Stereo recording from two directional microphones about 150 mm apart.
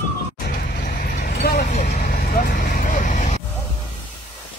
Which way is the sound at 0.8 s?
90° left.